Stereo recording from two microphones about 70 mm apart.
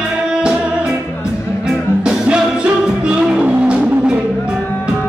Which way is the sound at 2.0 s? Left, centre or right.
Centre.